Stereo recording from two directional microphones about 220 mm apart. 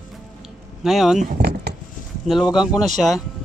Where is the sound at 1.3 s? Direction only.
45° right (ahead or behind).